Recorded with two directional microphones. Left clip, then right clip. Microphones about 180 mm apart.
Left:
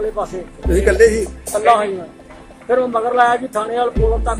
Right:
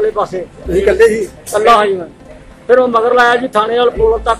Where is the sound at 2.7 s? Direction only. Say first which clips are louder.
Right 7 dB; 10° left (ahead or behind).